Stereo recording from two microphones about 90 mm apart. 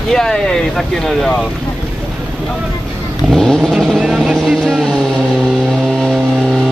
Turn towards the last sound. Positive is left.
turn(degrees=0)  # may be behind; listen again after turning